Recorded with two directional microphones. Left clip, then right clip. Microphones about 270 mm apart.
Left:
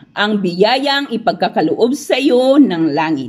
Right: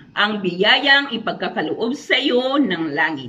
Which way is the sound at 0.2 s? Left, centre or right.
Left.